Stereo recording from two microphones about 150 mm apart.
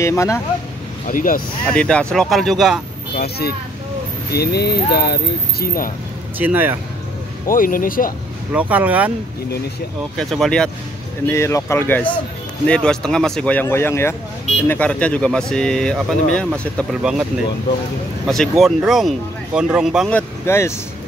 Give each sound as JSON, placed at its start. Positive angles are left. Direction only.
{"t": 0.0, "sound": "speech", "side_deg": 20}
{"t": 1.0, "sound": "speech", "side_deg": 65}
{"t": 1.7, "sound": "speech", "side_deg": 5}
{"t": 3.2, "sound": "speech", "side_deg": 90}
{"t": 6.3, "sound": "speech", "side_deg": -10}
{"t": 7.4, "sound": "speech", "side_deg": 65}
{"t": 8.5, "sound": "speech", "side_deg": -10}
{"t": 10.1, "sound": "speech", "side_deg": 0}
{"t": 11.2, "sound": "speech", "side_deg": 20}
{"t": 18.2, "sound": "speech", "side_deg": 0}
{"t": 20.1, "sound": "speech", "side_deg": 15}